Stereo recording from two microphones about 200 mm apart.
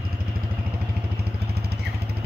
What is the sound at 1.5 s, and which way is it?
Vehicle, 50° right (ahead or behind).